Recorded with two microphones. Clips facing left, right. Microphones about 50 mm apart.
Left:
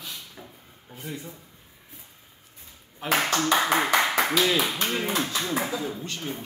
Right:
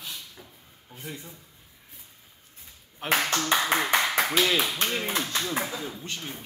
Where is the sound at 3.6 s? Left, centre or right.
Left.